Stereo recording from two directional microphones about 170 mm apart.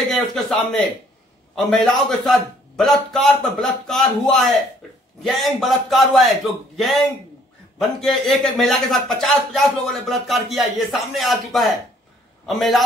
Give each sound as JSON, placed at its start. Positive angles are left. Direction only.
{"t": 0.1, "sound": "a man's voice", "side_deg": 0}
{"t": 8.0, "sound": "a man's voice", "side_deg": 0}